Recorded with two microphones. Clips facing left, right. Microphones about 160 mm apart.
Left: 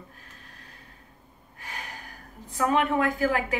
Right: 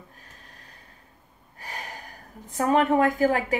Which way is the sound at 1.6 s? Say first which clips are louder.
Right 2 dB; 40° right (ahead or behind).